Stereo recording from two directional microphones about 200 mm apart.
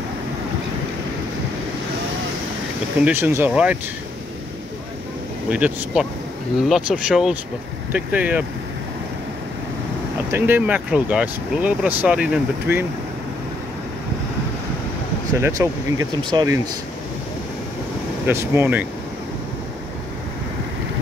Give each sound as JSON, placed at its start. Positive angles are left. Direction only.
{"t": 3.0, "sound": "speech", "side_deg": -10}
{"t": 5.5, "sound": "speech", "side_deg": -5}
{"t": 10.3, "sound": "speech", "side_deg": -10}
{"t": 15.3, "sound": "speech", "side_deg": -15}
{"t": 18.2, "sound": "speech", "side_deg": -10}